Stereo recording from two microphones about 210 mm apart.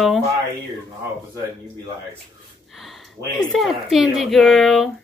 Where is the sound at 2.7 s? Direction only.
Centre (ahead or behind).